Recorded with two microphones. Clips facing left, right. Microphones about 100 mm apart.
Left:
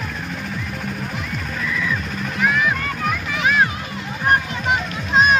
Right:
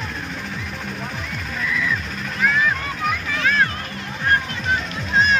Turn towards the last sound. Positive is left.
turn(degrees=15)  # may be behind; listen again after turning